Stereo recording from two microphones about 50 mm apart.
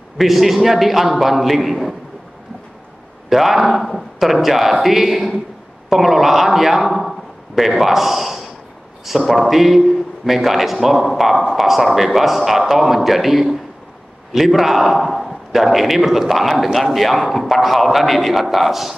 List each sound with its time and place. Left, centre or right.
0.2 s a man's voice: centre
3.3 s a man's voice: centre